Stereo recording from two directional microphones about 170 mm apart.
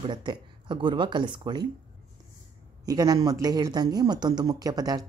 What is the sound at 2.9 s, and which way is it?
A woman's voice, 20° right (ahead or behind).